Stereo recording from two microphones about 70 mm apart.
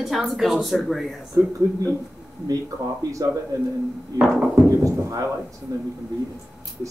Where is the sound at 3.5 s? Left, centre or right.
Right.